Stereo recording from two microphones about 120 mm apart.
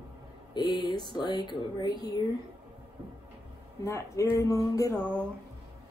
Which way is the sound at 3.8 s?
25° left (ahead or behind).